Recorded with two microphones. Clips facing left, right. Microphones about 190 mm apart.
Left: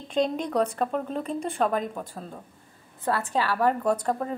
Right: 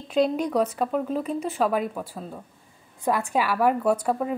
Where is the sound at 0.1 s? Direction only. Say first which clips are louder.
Right 3 dB; 5° right (ahead or behind).